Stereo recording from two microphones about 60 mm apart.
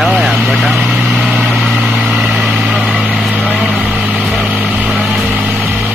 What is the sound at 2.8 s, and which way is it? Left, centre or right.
Vehicle, centre.